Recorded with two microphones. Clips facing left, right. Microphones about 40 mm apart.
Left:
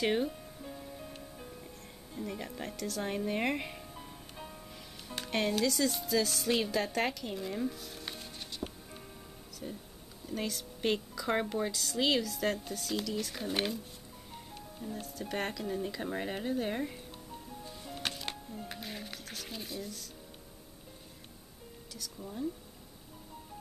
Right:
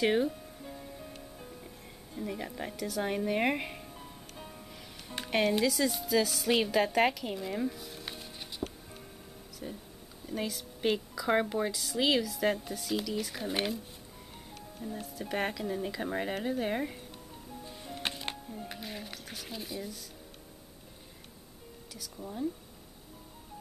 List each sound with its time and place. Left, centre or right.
0.0 s music: centre
2.1 s speech: centre
3.9 s music: centre
5.0 s speech: centre
14.8 s speech: centre
17.6 s music: centre
18.3 s music: centre
21.9 s speech: centre